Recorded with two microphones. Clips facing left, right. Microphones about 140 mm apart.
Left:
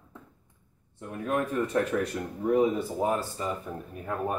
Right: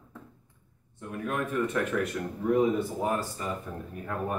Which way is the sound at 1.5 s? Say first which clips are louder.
Left 1 dB; 30° left (ahead or behind).